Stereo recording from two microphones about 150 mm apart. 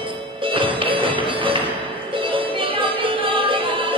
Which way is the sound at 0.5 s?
35° right (ahead or behind).